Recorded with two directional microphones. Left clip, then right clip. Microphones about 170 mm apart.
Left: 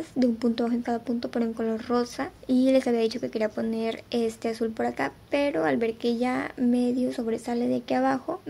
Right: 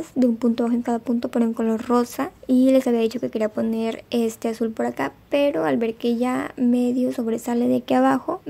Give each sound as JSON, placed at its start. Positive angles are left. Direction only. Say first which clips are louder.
{"t": 0.2, "sound": "speech", "louder": "right 4 dB", "side_deg": -30}